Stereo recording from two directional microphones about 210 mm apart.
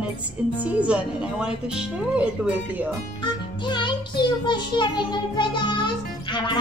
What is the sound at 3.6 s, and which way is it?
A child's voice, 20° left (ahead or behind).